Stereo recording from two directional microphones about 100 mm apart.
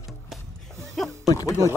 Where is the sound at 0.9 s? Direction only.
5° left (ahead or behind).